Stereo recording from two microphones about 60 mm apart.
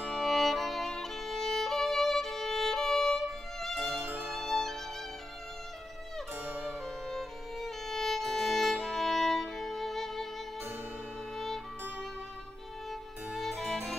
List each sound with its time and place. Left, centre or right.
0.1 s violin: centre
3.9 s music: right
4.3 s music: centre
7.1 s violin: centre
11.3 s music: centre
13.4 s music: centre